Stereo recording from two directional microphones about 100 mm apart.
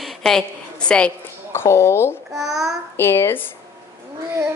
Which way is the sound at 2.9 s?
25° left (ahead or behind).